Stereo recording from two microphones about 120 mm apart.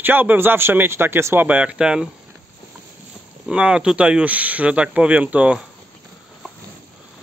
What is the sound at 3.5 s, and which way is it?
Speech, 10° right (ahead or behind).